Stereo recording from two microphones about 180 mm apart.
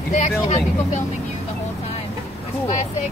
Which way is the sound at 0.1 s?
40° left (ahead or behind).